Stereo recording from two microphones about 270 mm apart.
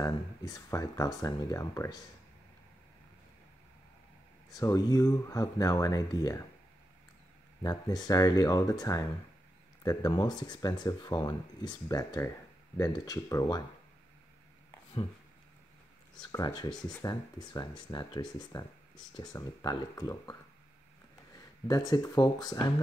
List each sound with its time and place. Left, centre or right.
0.0 s speech: centre
4.5 s speech: centre
7.6 s speech: centre
16.2 s speech: centre
16.7 s speech: centre
17.0 s speech: centre
21.6 s speech: centre